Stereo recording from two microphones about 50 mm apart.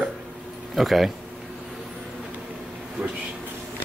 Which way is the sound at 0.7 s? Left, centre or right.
Centre.